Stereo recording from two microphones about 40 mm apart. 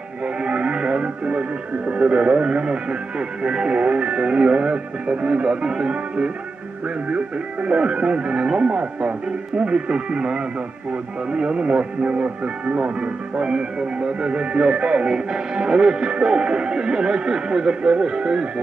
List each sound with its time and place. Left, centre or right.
0.4 s music: right
1.9 s speech: right